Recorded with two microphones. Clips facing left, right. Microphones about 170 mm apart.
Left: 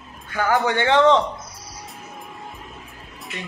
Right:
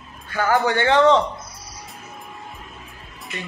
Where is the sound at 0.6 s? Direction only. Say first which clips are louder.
Right 1 dB; 15° left (ahead or behind).